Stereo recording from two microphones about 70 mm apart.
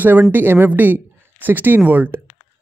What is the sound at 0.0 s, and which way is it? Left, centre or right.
Speech, right.